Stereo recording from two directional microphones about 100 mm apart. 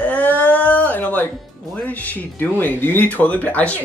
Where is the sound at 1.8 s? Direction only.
15° left (ahead or behind).